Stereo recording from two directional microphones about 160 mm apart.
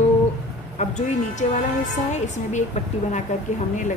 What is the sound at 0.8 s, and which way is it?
A woman's voice, 50° left (ahead or behind).